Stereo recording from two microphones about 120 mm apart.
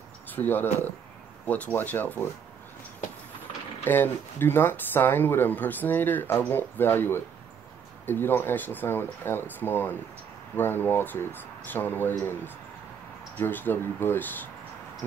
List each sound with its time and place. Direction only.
0.3 s speech: 15° left (ahead or behind)
3.8 s speech: 20° left (ahead or behind)
13.4 s speech: 15° left (ahead or behind)